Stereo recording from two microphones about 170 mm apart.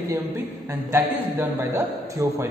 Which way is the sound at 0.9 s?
15° right (ahead or behind).